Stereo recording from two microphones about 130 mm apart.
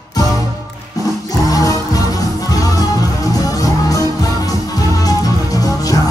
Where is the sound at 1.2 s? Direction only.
25° left (ahead or behind).